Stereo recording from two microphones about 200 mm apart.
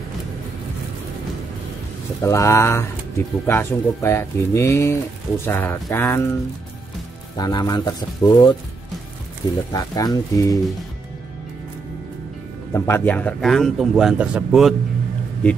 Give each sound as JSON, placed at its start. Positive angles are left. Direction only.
{"t": 2.2, "sound": "speech", "side_deg": 15}
{"t": 7.3, "sound": "speech", "side_deg": 20}
{"t": 9.7, "sound": "speech", "side_deg": 20}
{"t": 12.7, "sound": "speech", "side_deg": 10}